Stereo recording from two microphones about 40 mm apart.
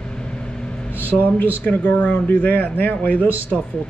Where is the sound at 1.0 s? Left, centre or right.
Right.